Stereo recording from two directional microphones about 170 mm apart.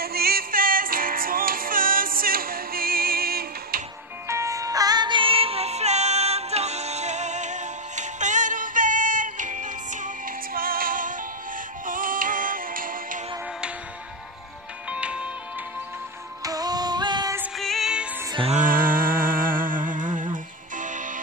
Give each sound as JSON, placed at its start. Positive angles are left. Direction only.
{"t": 0.0, "sound": "music", "side_deg": -65}
{"t": 4.3, "sound": "music", "side_deg": -20}
{"t": 14.9, "sound": "music", "side_deg": -5}
{"t": 16.4, "sound": "female singing", "side_deg": -20}
{"t": 17.6, "sound": "music", "side_deg": 0}
{"t": 18.4, "sound": "music", "side_deg": -45}